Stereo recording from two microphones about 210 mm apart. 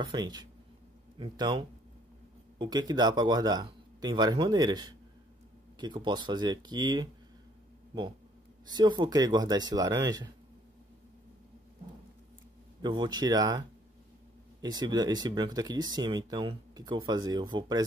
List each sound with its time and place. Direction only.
0.1 s speech: 20° right (ahead or behind)
8.6 s speech: 20° right (ahead or behind)
12.8 s speech: 20° right (ahead or behind)